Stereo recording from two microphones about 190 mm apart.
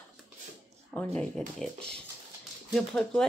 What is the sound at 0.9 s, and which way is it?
Speech, 5° left (ahead or behind).